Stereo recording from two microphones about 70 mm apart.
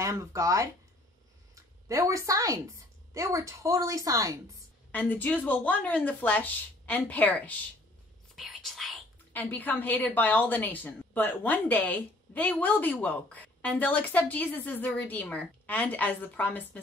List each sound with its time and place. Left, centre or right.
0.0 s a woman's voice: right
4.9 s a woman's voice: left
8.4 s whispering: centre
9.3 s a woman's voice: left